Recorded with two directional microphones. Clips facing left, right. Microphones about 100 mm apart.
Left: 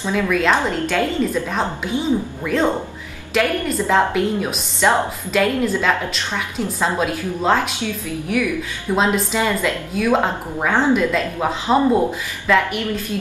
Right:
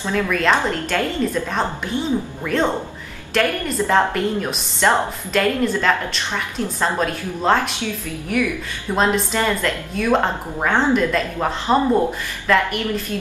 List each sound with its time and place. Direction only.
0.0 s a woman's voice: 10° left (ahead or behind)
8.9 s a woman's voice: 5° left (ahead or behind)